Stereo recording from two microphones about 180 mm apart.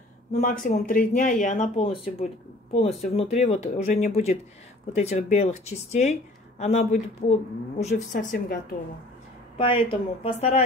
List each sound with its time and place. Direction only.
0.3 s speech: 45° left (ahead or behind)
9.6 s speech: 30° left (ahead or behind)